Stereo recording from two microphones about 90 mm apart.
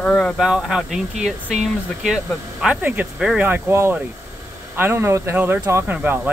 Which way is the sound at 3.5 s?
25° right (ahead or behind).